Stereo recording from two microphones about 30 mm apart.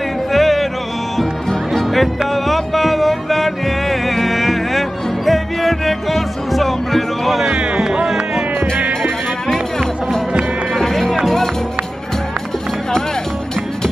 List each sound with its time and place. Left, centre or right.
0.3 s music: centre
2.0 s music: centre
7.5 s music: right
8.7 s music: right
9.5 s music: centre